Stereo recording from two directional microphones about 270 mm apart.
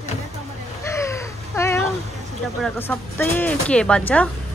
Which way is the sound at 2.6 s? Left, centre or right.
Centre.